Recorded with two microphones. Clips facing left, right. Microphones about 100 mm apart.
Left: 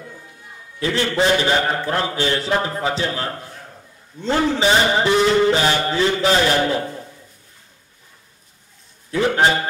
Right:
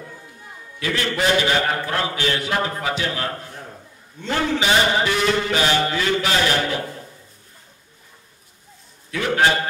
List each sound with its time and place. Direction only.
0.7 s a man's voice: 30° left (ahead or behind)
4.2 s mantra: 30° left (ahead or behind)
9.1 s a man's voice: 25° left (ahead or behind)